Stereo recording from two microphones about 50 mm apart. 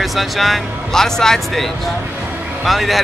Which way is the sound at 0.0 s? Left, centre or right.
Centre.